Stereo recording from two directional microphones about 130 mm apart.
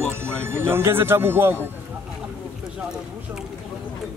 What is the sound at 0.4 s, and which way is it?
A man's voice, 20° right (ahead or behind).